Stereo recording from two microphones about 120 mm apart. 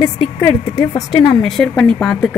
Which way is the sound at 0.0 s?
25° left (ahead or behind).